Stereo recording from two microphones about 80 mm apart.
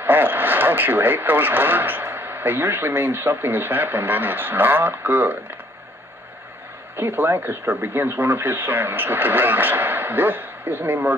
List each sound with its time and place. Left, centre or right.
0.0 s speech: right
7.0 s speech: right